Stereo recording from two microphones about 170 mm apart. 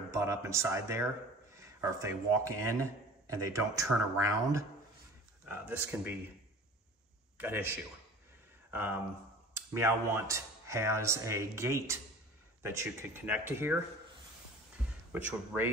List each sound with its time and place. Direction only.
0.1 s speech: 15° right (ahead or behind)
7.3 s a man's voice: 10° right (ahead or behind)
15.1 s speech: 10° right (ahead or behind)